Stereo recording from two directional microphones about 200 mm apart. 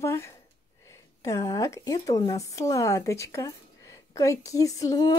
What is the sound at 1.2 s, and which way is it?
A woman's voice, 15° left (ahead or behind).